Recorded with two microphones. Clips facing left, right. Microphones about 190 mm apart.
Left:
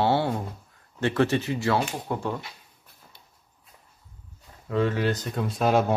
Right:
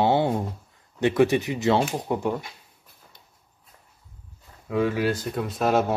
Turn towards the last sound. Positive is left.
turn(degrees=0)  # may be behind; listen again after turning